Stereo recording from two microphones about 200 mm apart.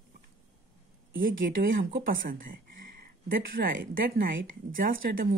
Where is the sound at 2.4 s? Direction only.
45° right (ahead or behind).